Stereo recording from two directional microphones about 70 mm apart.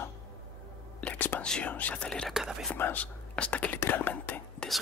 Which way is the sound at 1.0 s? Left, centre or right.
Left.